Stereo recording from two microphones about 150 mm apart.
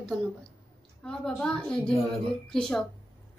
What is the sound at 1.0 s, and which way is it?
A woman's voice, 5° left (ahead or behind).